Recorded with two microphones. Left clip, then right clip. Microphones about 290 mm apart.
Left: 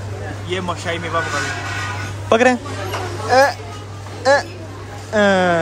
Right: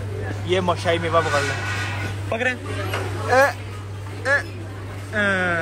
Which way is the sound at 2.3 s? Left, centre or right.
Left.